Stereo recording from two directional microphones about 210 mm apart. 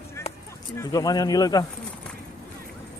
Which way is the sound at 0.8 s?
15° left (ahead or behind).